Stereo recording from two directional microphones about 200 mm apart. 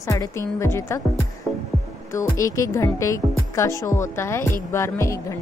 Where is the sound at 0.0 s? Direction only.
15° left (ahead or behind).